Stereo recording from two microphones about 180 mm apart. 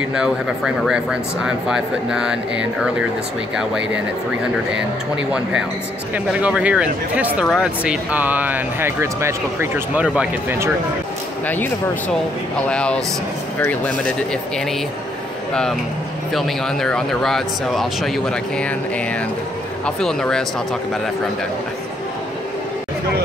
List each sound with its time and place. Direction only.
0.1 s speech: 5° right (ahead or behind)
5.1 s speech: 5° right (ahead or behind)
11.4 s speech: 10° left (ahead or behind)
16.3 s speech: centre (ahead or behind)
20.0 s speech: 5° left (ahead or behind)